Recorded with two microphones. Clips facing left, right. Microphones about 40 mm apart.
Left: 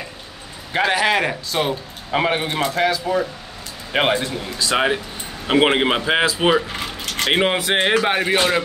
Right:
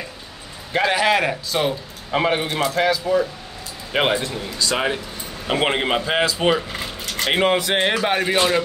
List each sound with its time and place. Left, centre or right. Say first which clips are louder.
0.7 s speech: even; centre